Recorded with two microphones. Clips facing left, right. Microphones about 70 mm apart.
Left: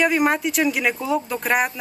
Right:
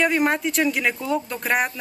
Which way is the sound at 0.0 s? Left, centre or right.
Centre.